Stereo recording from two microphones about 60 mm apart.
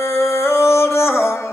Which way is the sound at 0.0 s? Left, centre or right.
Left.